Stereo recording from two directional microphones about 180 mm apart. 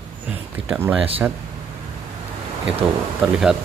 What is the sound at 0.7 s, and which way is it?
Speech, 5° right (ahead or behind).